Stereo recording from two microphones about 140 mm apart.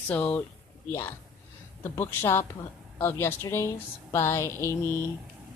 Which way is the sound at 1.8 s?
20° left (ahead or behind).